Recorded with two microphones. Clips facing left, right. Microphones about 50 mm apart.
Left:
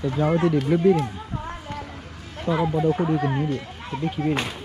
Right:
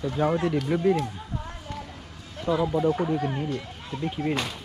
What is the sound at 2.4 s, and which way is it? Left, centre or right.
Speech, left.